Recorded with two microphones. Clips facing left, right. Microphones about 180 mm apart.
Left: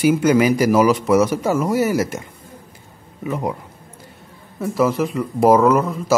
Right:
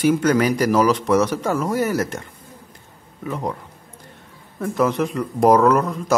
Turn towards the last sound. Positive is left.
turn(degrees=5)  # may be behind; listen again after turning